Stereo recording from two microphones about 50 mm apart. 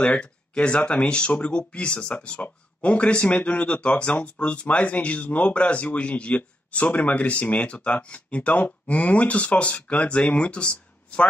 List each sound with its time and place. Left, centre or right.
0.0 s speech: left